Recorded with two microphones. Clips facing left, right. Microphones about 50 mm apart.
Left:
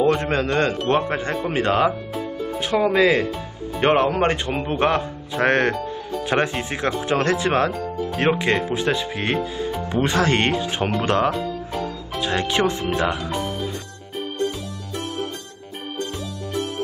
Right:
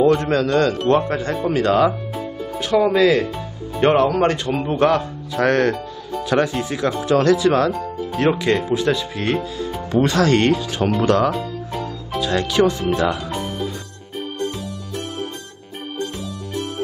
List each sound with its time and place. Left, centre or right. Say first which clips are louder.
0.1 s speech: right 4 dB; left
11.3 s music: even; centre
12.2 s speech: right 3 dB; left